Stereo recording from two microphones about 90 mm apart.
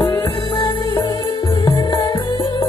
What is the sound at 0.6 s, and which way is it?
Music, 60° left (ahead or behind).